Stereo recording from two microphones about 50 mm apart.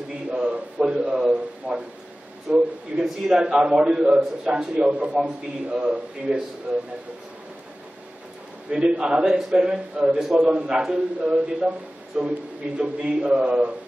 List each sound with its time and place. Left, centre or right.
0.3 s a sound: right
0.8 s a man's voice: centre
6.7 s a man's voice: centre
8.7 s a man's voice: centre